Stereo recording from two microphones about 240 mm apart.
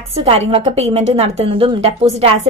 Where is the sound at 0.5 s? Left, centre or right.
Right.